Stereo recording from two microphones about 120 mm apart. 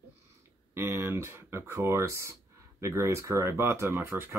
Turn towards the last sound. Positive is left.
turn(degrees=-20)  # may be behind; listen again after turning